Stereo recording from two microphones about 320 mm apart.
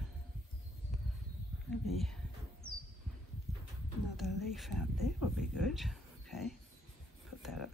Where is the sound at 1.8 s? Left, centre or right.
Centre.